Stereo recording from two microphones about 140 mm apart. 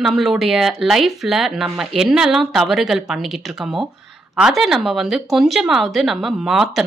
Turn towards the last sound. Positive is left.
turn(degrees=0)  # may be behind; listen again after turning